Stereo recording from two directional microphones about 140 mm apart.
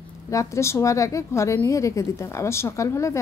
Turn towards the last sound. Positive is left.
turn(degrees=20)  # may be behind; listen again after turning